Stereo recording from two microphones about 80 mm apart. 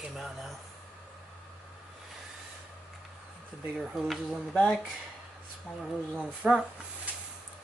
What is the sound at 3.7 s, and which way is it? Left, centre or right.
Speech, centre.